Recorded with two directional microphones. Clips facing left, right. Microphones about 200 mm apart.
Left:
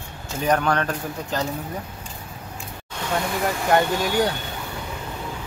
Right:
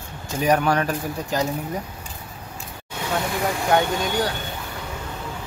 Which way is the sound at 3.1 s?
Centre (ahead or behind).